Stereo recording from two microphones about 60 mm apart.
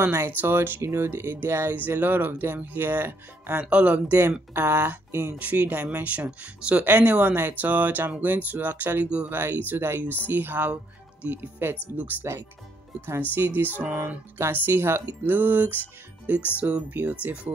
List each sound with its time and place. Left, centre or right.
0.0 s speech: right
3.7 s speech: right
5.4 s speech: right
9.0 s speech: centre
9.3 s speech: right
13.3 s speech: right
14.7 s speech: right
15.0 s speech: right